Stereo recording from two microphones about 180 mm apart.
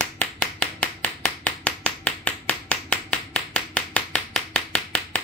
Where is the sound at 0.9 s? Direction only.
10° left (ahead or behind).